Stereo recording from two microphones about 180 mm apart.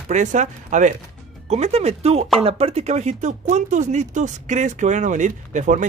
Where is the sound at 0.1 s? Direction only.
45° right (ahead or behind).